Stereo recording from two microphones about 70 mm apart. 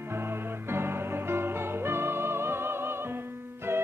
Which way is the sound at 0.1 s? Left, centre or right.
Right.